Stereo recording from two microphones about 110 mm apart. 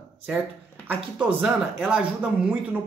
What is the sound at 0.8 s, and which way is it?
Speech, 15° right (ahead or behind).